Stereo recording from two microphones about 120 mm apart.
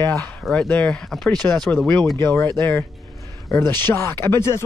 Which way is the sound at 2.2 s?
20° left (ahead or behind).